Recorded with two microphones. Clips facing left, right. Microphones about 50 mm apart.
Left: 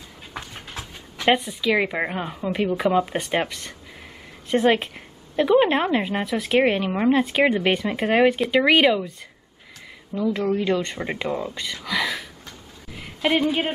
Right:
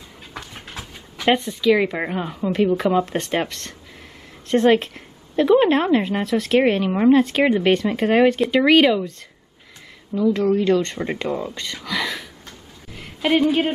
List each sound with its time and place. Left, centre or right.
0.5 s a woman's voice: centre
10.1 s a woman's voice: centre
11.5 s a sound: centre